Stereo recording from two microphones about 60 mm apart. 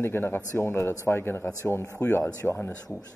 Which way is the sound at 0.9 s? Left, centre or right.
Left.